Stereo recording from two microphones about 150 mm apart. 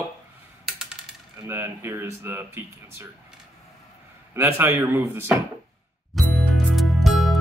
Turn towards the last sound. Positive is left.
turn(degrees=0)  # may be behind; listen again after turning